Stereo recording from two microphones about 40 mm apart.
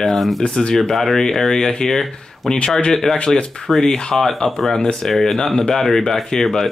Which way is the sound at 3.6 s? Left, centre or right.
Centre.